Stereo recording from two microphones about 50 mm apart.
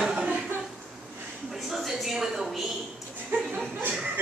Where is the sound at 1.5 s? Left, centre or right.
Centre.